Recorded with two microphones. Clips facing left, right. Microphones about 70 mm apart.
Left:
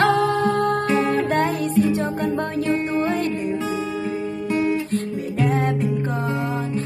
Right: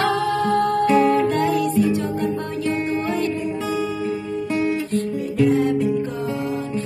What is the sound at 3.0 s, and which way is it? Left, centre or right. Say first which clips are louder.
Music: left 1 dB; left.